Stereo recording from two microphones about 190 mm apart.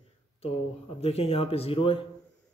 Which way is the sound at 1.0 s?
30° left (ahead or behind).